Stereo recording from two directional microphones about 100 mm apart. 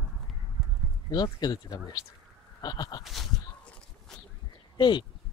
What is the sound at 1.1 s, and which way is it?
Speech, 45° left (ahead or behind).